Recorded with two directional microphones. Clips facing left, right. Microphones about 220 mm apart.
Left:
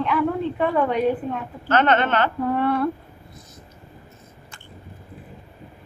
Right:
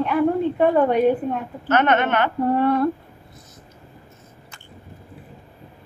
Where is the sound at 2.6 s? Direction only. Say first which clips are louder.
Right 2 dB; 40° right (ahead or behind).